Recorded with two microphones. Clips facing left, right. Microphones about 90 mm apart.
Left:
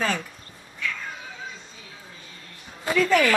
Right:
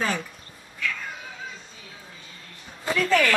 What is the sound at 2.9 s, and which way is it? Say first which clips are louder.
Speech: left 2 dB; 15° left (ahead or behind).